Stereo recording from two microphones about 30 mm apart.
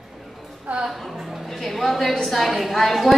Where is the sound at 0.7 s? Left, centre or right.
Right.